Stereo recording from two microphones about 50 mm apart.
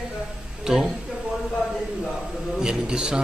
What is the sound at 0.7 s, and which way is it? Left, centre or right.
Speech, centre.